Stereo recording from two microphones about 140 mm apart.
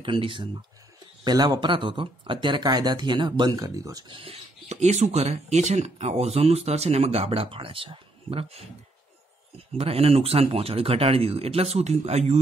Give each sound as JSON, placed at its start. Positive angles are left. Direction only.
{"t": 0.0, "sound": "speech", "side_deg": -40}
{"t": 4.2, "sound": "speech", "side_deg": -50}
{"t": 9.8, "sound": "speech", "side_deg": -45}